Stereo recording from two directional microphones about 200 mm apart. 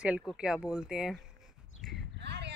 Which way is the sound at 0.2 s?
Centre (ahead or behind).